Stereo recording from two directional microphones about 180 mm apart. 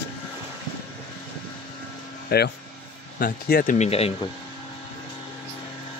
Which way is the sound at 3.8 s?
35° left (ahead or behind).